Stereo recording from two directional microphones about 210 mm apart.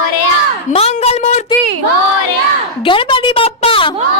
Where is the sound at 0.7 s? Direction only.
30° left (ahead or behind).